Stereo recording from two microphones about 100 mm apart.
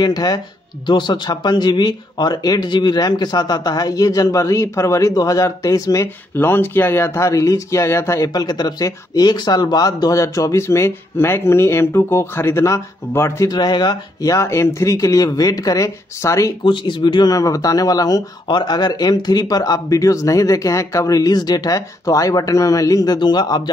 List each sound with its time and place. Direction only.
0.0 s speech: 40° left (ahead or behind)
6.3 s speech: 20° left (ahead or behind)
8.3 s speech: 45° left (ahead or behind)
13.5 s speech: 45° left (ahead or behind)
14.3 s speech: 30° left (ahead or behind)
16.6 s speech: 55° left (ahead or behind); by 18.2 s 40° left (ahead or behind)
18.5 s speech: 50° left (ahead or behind)